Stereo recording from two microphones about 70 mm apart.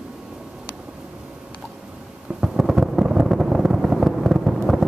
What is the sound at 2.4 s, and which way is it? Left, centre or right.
Vehicle, centre.